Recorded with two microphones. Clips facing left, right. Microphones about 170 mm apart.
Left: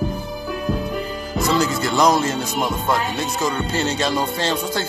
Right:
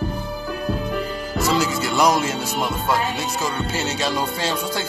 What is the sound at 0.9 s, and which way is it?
Speech, 5° right (ahead or behind).